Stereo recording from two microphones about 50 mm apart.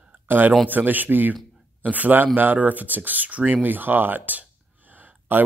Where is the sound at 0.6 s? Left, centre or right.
Right.